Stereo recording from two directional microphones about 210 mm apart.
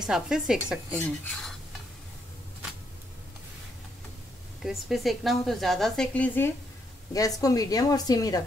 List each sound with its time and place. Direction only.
0.0 s a woman's voice: 5° right (ahead or behind)
4.6 s a woman's voice: centre (ahead or behind); by 8.4 s 15° left (ahead or behind)